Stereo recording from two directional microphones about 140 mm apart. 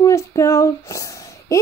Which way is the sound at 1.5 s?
25° left (ahead or behind).